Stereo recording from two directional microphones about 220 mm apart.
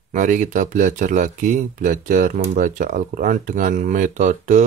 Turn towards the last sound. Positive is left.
turn(degrees=-35)  # may be behind; listen again after turning